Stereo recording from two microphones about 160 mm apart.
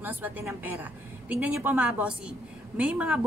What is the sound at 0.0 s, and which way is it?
A woman's voice, 10° right (ahead or behind).